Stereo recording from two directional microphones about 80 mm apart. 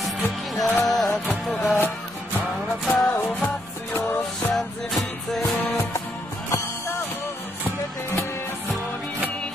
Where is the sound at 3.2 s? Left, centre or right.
Left.